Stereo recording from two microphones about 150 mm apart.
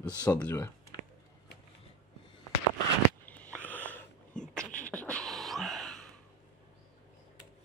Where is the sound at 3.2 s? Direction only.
10° left (ahead or behind).